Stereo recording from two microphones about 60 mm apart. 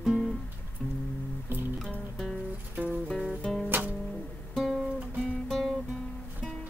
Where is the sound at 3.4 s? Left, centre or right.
Centre.